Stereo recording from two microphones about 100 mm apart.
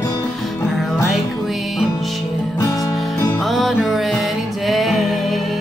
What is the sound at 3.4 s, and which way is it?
Music, centre (ahead or behind).